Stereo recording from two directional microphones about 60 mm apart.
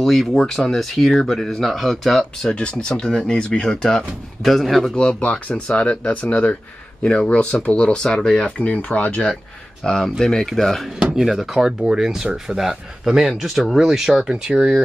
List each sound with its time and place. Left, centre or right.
0.0 s speech: centre
2.5 s speech: centre
4.4 s speech: centre
4.9 s speech: centre
9.8 s speech: centre